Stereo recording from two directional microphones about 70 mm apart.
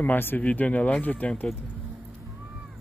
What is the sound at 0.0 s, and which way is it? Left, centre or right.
Speech, left.